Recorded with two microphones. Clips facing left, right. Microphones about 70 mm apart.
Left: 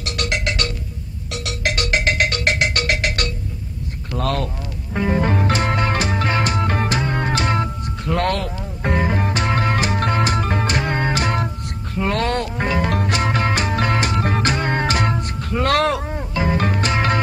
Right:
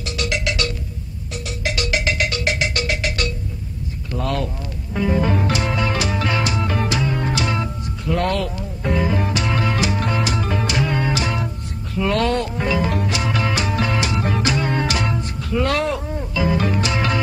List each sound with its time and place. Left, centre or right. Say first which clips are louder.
0.0 s music: even; left
1.3 s music: left 2 dB; left
4.2 s speech: left 1 dB; left
4.9 s music: even; left
11.4 s music: left 1 dB; left
16.3 s music: even; left